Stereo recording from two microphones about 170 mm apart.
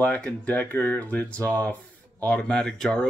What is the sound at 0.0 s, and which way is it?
Speech, 10° left (ahead or behind).